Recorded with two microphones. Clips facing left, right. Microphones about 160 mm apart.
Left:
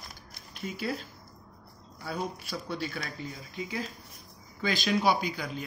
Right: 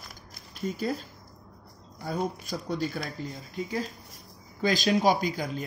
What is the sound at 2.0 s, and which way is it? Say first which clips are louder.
Speech: right 4 dB; 45° right (ahead or behind).